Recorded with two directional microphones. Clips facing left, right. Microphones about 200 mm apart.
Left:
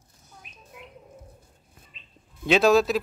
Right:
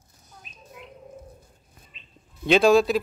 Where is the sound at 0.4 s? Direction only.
60° left (ahead or behind).